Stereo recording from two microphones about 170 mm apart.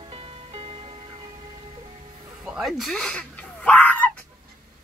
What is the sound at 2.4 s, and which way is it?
Speech, 5° right (ahead or behind).